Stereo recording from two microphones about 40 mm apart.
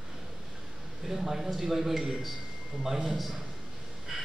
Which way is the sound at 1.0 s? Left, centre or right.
Centre.